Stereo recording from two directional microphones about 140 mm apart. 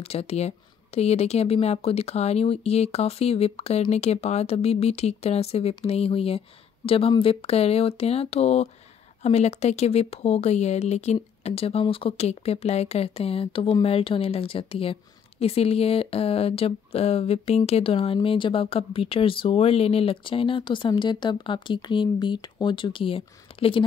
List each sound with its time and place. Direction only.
0.0 s a woman's voice: 45° left (ahead or behind)